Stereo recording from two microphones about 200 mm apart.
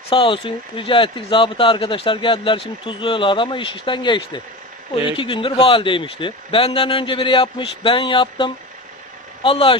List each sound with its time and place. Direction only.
0.1 s speech: 25° left (ahead or behind)